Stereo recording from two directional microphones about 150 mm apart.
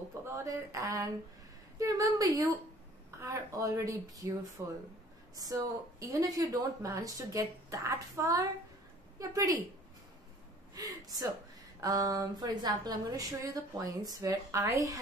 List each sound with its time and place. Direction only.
0.2 s speech: 20° right (ahead or behind)
4.6 s speech: 10° right (ahead or behind)
5.3 s speech: 25° right (ahead or behind)
10.7 s speech: 25° right (ahead or behind)